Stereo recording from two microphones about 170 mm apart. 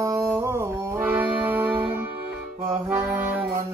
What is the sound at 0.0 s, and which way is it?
Music, 20° right (ahead or behind).